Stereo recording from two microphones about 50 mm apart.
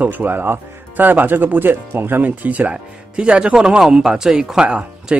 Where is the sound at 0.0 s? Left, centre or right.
Right.